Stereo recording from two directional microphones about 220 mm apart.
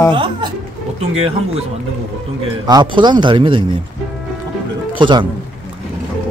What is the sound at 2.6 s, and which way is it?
A man's voice, 20° right (ahead or behind).